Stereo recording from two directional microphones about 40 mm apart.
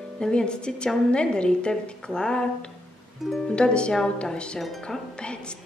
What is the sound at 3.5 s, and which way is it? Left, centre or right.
Speech, left.